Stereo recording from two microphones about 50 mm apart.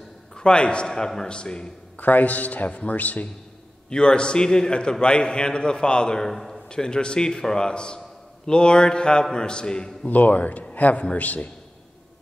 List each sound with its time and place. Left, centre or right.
0.4 s a man's voice: centre
2.0 s a man's voice: left
3.9 s a man's voice: centre
6.7 s a man's voice: centre
10.0 s a man's voice: left